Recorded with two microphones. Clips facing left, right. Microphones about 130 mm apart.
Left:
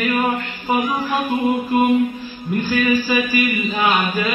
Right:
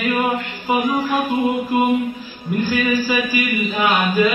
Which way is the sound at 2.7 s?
Centre (ahead or behind).